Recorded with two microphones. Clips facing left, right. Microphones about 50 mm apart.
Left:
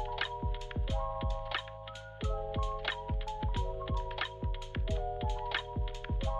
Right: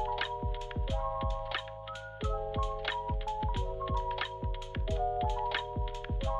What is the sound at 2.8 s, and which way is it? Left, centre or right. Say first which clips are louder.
Music: right 3 dB; centre.